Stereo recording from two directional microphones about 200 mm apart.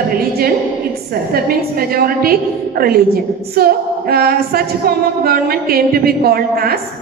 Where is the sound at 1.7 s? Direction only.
50° right (ahead or behind).